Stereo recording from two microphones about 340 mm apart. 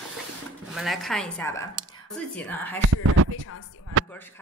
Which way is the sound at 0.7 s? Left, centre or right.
Centre.